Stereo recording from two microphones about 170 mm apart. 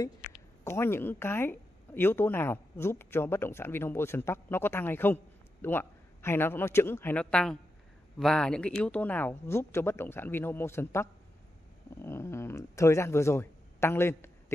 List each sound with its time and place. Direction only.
0.7 s a woman's voice: 15° left (ahead or behind)